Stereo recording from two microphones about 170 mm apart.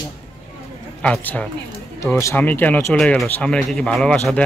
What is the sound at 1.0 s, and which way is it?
Speech, 5° left (ahead or behind).